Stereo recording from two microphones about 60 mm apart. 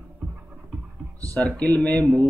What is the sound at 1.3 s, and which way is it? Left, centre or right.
Speech, left.